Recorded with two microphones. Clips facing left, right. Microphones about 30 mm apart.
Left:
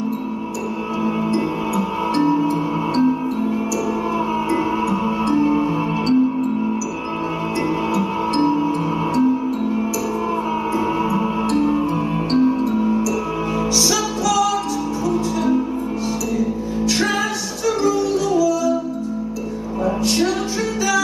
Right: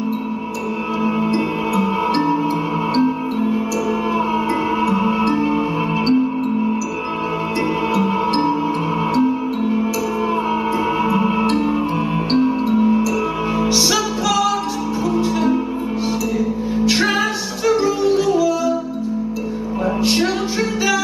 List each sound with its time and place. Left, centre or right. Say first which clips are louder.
1.0 s music: right 1 dB; right
7.9 s music: right 2 dB; centre
11.1 s music: right 3 dB; right
19.8 s music: right 1 dB; right